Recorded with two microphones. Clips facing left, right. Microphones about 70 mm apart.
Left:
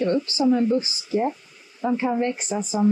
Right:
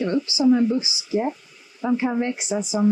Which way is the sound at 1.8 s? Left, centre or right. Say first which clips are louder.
Right 1 dB; right.